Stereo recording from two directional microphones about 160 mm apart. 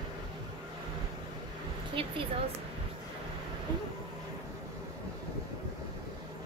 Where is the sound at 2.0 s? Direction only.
35° right (ahead or behind).